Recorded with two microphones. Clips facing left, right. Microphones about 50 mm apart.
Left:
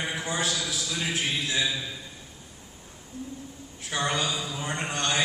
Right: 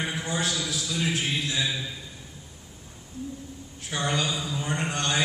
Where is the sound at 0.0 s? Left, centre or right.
Left.